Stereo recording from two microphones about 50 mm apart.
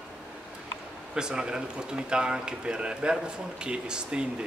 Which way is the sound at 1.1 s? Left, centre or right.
Centre.